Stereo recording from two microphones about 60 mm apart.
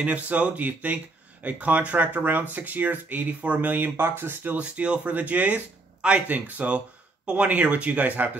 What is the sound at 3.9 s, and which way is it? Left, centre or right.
Speech, right.